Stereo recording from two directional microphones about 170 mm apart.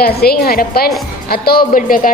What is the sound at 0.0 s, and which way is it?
A woman's voice, 65° left (ahead or behind).